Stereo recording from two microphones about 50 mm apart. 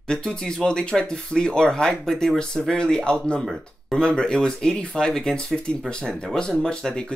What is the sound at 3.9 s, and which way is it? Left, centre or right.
Speech, centre.